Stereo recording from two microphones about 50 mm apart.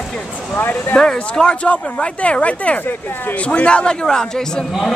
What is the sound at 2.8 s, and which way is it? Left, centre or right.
Speech, left.